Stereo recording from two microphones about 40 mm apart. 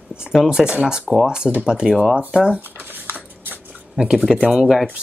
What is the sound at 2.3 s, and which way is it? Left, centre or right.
Speech, right.